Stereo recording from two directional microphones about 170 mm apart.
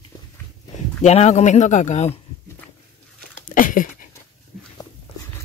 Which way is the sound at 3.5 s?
50° left (ahead or behind).